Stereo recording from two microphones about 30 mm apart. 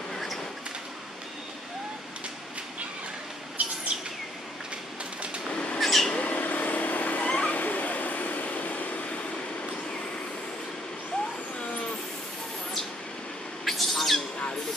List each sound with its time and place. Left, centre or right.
0.1 s a sound: centre
3.6 s bird: right
5.5 s bird flight: left
5.8 s mouse: centre
6.1 s vehicle: left
7.2 s a sound: left
7.5 s bow-wow: left
8.5 s vehicle: left
13.7 s owl: centre